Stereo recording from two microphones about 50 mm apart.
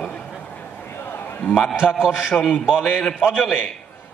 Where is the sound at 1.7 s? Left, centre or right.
Centre.